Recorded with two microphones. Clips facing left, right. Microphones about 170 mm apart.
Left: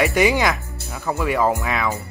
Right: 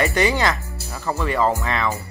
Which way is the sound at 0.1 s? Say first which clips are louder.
Left 2 dB; 15° left (ahead or behind).